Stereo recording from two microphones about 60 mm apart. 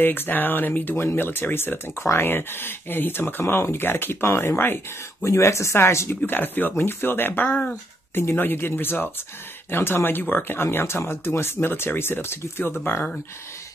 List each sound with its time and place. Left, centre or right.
0.0 s speech: left
5.2 s speech: left
6.0 s speech: left
8.1 s speech: left